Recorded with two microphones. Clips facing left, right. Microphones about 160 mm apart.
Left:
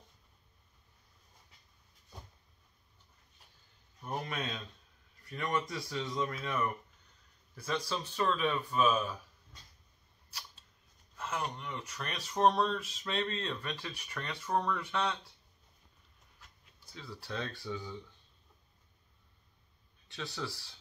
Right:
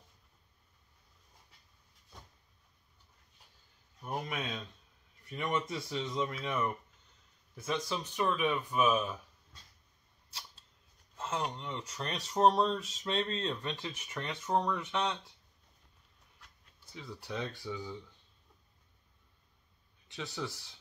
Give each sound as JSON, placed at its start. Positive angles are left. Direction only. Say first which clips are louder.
{"t": 5.2, "sound": "speech", "louder": "even", "side_deg": -20}
{"t": 11.1, "sound": "a sound", "louder": "right 1 dB", "side_deg": -25}
{"t": 11.5, "sound": "speech", "louder": "right 1 dB", "side_deg": -25}
{"t": 16.9, "sound": "speech", "louder": "right 1 dB", "side_deg": -20}
{"t": 20.1, "sound": "speech", "louder": "right 1 dB", "side_deg": -20}